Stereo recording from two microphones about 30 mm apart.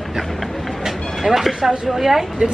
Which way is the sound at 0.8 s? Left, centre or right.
Centre.